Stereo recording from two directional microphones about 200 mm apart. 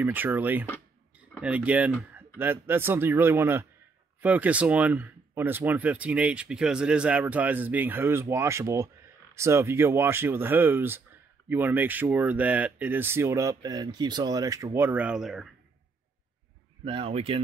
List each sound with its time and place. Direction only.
0.0 s speech: 10° right (ahead or behind)
16.8 s speech: 25° right (ahead or behind)